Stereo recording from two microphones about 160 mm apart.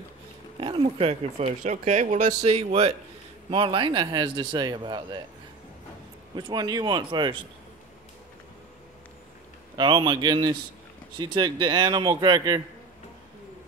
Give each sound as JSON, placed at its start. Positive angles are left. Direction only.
{"t": 0.6, "sound": "speech", "side_deg": -30}
{"t": 1.6, "sound": "speech", "side_deg": -50}
{"t": 6.3, "sound": "speech", "side_deg": -25}
{"t": 9.8, "sound": "speech", "side_deg": -30}